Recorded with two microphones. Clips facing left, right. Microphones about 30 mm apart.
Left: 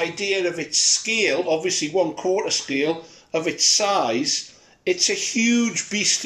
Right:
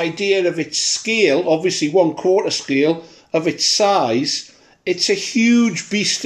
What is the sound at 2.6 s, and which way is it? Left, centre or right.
Speech, right.